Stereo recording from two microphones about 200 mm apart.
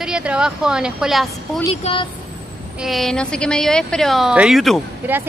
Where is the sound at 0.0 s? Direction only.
5° right (ahead or behind).